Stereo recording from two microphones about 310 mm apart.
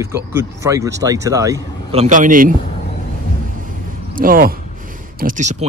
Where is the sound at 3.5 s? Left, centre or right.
Right.